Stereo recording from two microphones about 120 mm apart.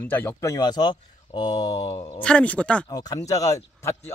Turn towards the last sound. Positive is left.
turn(degrees=30)  # may be behind; listen again after turning